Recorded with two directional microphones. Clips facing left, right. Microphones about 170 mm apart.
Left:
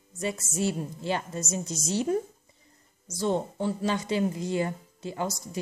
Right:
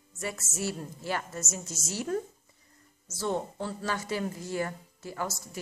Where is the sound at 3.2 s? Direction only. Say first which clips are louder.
Left 4 dB; 15° left (ahead or behind).